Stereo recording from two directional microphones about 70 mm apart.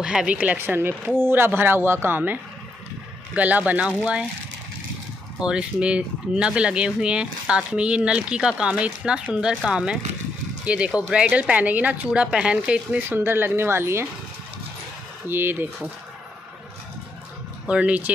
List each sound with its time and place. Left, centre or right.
0.0 s speech: centre
0.6 s speech: right; by 4.3 s centre
5.4 s speech: centre
13.1 s speech: right
15.2 s speech: right
17.6 s speech: centre